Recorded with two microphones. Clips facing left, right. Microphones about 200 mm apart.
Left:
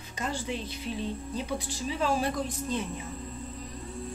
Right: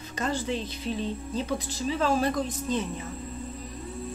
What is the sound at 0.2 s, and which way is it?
Speech, 10° left (ahead or behind).